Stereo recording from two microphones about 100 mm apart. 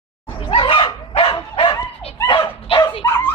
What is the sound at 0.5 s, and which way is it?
Dog, 60° left (ahead or behind).